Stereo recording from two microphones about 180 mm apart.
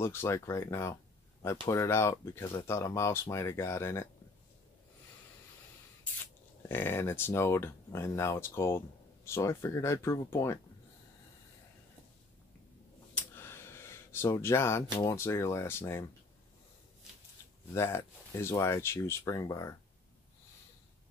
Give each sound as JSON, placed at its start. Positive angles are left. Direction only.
{"t": 0.0, "sound": "speech", "side_deg": 15}
{"t": 6.7, "sound": "speech", "side_deg": 10}
{"t": 13.1, "sound": "a sound", "side_deg": 15}
{"t": 15.0, "sound": "speech", "side_deg": 15}
{"t": 17.7, "sound": "speech", "side_deg": 15}